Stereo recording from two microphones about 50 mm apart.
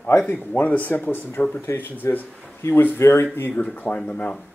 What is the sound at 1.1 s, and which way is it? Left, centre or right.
Speech, left.